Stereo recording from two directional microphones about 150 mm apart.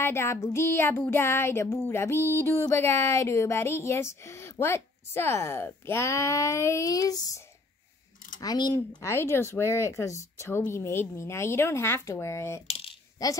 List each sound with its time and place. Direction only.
0.0 s a sound: 15° left (ahead or behind)
12.6 s coin: 40° left (ahead or behind)
13.2 s a woman's voice: 25° left (ahead or behind)